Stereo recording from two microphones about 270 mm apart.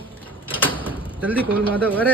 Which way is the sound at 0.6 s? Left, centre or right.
Centre.